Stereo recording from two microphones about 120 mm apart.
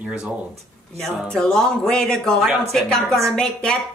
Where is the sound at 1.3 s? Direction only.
5° left (ahead or behind).